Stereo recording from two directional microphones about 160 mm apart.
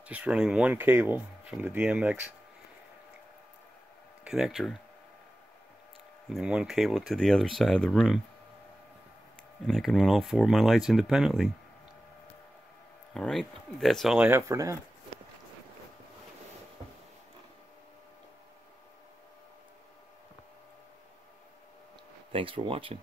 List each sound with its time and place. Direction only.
0.0 s speech: 10° right (ahead or behind)
4.2 s speech: centre (ahead or behind)
6.2 s speech: 5° right (ahead or behind)
9.7 s speech: centre (ahead or behind)
13.1 s speech: centre (ahead or behind); by 14.8 s 20° right (ahead or behind)
22.3 s speech: 35° right (ahead or behind)